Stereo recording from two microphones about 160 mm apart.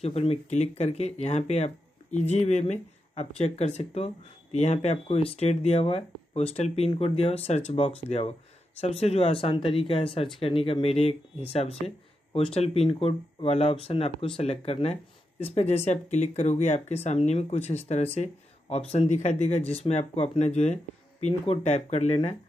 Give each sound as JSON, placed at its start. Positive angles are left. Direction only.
{"t": 0.0, "sound": "speech", "side_deg": 40}